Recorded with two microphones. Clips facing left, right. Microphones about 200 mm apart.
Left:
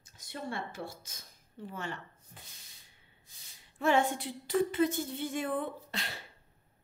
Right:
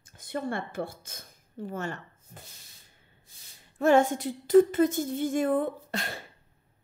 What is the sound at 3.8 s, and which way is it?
A woman's voice, 45° right (ahead or behind).